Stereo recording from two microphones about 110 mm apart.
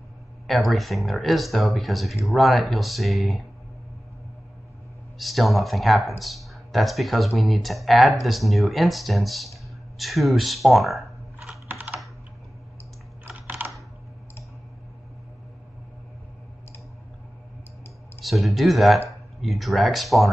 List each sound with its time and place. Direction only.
0.5 s speech: centre (ahead or behind)
5.2 s speech: centre (ahead or behind)
11.6 s typing: 15° right (ahead or behind)
13.3 s computer keyboard: 15° right (ahead or behind)
18.2 s speech: centre (ahead or behind)